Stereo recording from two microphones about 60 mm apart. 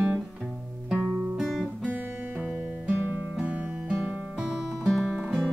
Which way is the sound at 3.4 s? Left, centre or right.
Right.